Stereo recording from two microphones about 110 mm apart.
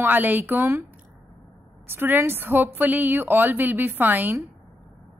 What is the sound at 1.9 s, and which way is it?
A woman's voice, 20° right (ahead or behind).